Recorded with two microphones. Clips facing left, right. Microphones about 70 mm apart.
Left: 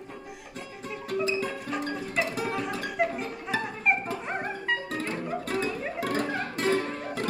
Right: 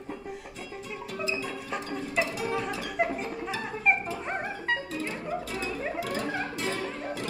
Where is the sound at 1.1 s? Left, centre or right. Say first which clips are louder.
Left 5 dB; left.